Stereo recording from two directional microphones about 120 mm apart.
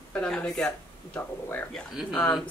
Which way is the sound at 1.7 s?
5° left (ahead or behind).